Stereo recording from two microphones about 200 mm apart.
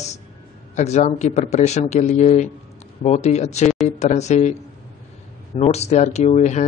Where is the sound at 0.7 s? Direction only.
35° left (ahead or behind).